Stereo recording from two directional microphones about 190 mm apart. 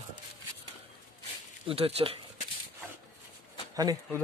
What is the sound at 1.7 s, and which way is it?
Speech, 30° right (ahead or behind).